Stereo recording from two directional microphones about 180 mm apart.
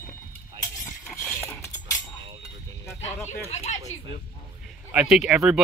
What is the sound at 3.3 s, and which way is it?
Speech, 40° left (ahead or behind).